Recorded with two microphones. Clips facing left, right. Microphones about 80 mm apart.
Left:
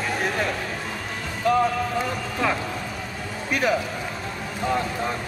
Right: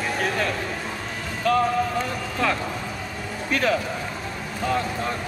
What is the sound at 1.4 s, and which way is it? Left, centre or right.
Speech, left.